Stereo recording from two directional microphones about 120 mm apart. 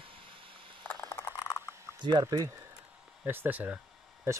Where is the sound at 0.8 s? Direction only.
20° left (ahead or behind).